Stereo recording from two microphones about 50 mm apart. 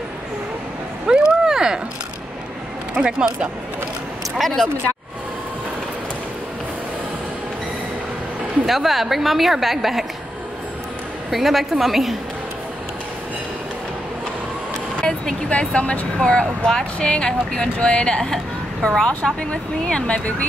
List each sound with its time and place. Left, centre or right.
1.0 s vehicle: centre
2.9 s speech: centre
4.4 s a woman's voice: centre
8.6 s a woman's voice: centre
11.2 s a woman's voice: centre
15.0 s vehicle: centre
15.7 s a woman's voice: left